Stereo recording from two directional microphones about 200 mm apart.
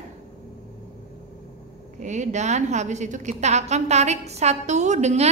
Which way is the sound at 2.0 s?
35° right (ahead or behind).